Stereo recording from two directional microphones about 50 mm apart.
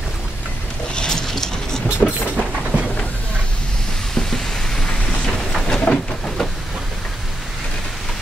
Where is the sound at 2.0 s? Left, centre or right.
Left.